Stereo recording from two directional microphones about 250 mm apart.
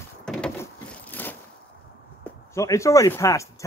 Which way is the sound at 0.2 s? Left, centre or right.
Centre.